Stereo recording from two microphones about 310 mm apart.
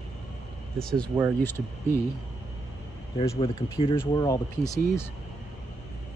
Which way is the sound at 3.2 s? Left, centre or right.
Centre.